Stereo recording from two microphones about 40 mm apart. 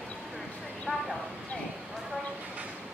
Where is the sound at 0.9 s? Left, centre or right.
Right.